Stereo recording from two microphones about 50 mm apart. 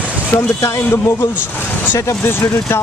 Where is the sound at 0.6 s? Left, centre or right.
Left.